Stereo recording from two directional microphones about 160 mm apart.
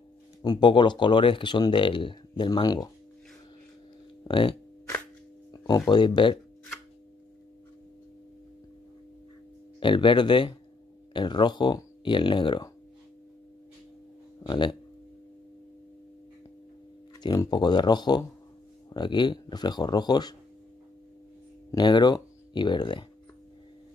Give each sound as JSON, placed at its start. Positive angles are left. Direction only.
{"t": 0.4, "sound": "speech", "side_deg": 30}
{"t": 4.2, "sound": "speech", "side_deg": 30}
{"t": 5.5, "sound": "a sound", "side_deg": 25}
{"t": 5.9, "sound": "speech", "side_deg": 30}
{"t": 9.8, "sound": "speech", "side_deg": 30}
{"t": 14.4, "sound": "speech", "side_deg": 30}
{"t": 17.2, "sound": "speech", "side_deg": 25}
{"t": 21.7, "sound": "speech", "side_deg": 30}